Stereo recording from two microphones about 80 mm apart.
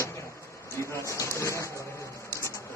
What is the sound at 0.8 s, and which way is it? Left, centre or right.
Speech, left.